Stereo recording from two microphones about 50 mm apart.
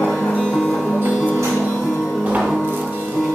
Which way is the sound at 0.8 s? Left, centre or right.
Right.